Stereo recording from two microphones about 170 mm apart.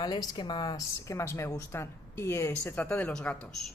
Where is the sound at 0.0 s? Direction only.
25° left (ahead or behind).